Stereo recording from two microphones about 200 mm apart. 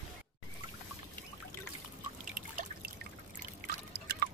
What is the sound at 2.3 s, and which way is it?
Trickle, 45° right (ahead or behind).